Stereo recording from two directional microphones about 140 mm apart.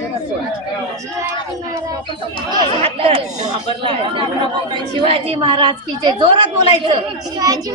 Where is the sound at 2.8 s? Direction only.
45° right (ahead or behind).